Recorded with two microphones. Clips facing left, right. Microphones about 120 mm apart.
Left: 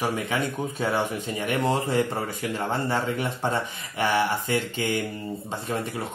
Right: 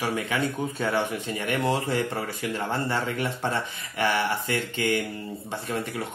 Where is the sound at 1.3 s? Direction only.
20° left (ahead or behind).